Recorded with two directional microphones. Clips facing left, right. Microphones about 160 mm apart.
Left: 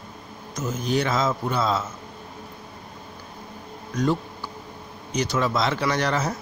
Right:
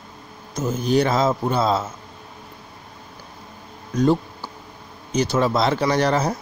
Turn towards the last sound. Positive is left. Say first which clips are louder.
# right 5 dB
turn(degrees=-35)  # may be behind; listen again after turning